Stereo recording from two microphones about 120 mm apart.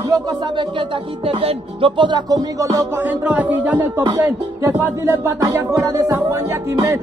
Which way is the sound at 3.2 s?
10° right (ahead or behind).